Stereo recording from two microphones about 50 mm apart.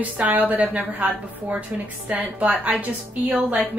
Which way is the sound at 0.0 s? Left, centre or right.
Right.